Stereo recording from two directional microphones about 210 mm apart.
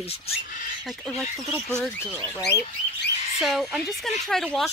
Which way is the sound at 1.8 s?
10° left (ahead or behind).